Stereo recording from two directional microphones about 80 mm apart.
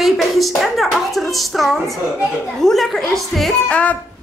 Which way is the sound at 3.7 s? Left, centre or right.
Centre.